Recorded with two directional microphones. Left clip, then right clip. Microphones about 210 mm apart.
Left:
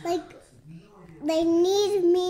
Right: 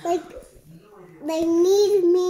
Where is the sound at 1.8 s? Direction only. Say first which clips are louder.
Right 4 dB; 25° left (ahead or behind).